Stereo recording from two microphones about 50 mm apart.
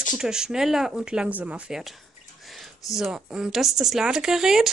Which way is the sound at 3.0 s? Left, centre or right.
Centre.